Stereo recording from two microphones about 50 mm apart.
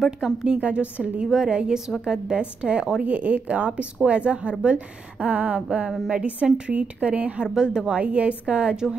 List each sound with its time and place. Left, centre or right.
0.2 s speech: centre
1.2 s speech: centre
1.5 s speech: right
3.0 s speech: right
7.5 s speech: centre